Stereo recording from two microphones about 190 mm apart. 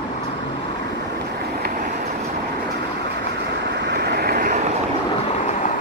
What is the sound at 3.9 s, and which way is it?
Vehicle, 60° right (ahead or behind).